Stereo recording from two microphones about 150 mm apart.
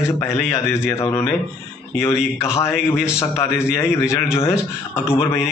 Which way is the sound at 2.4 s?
20° left (ahead or behind).